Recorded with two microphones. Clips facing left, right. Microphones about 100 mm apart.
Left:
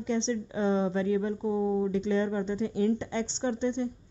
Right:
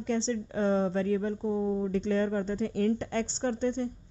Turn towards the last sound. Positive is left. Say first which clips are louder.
# even
turn(degrees=-40)  # may be behind; listen again after turning